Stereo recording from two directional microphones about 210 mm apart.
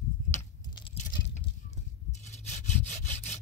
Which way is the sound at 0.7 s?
20° left (ahead or behind).